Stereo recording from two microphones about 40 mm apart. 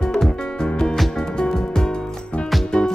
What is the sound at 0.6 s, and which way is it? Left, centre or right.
Music, centre.